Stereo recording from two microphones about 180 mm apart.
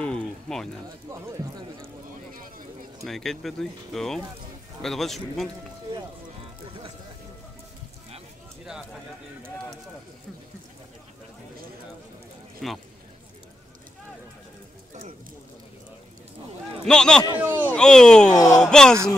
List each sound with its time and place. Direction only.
0.0 s a sound: 5° left (ahead or behind)
3.0 s speech: centre (ahead or behind)
12.5 s speech: centre (ahead or behind)
16.8 s speech: 5° left (ahead or behind)
17.4 s a sound: 10° right (ahead or behind)
17.6 s speech: 5° left (ahead or behind)
18.3 s speech: 20° left (ahead or behind)
18.6 s speech: 5° left (ahead or behind)